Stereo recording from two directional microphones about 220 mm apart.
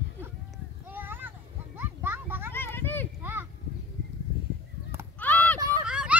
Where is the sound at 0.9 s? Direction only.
10° right (ahead or behind).